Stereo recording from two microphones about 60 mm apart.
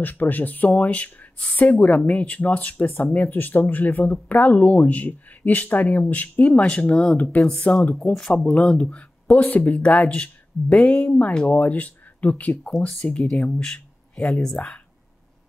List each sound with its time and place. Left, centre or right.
0.0 s speech: left
7.9 s speech: centre; by 12.5 s left
12.6 s speech: centre
13.0 s speech: centre
13.6 s a sound: centre